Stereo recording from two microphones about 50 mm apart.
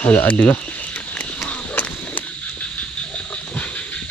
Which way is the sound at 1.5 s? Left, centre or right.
Left.